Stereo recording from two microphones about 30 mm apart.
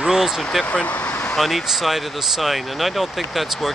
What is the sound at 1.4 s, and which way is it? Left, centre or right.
Speech, centre.